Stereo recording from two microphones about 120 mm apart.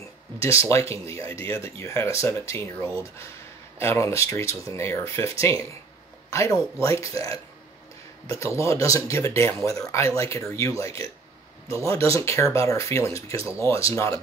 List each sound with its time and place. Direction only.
0.4 s speech: 25° left (ahead or behind)